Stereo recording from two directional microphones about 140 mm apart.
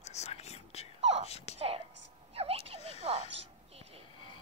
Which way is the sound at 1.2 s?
50° left (ahead or behind).